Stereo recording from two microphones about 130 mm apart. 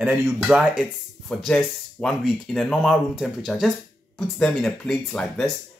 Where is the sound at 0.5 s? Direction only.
5° right (ahead or behind).